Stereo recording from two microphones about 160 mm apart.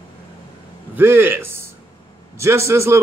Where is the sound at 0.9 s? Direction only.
10° right (ahead or behind).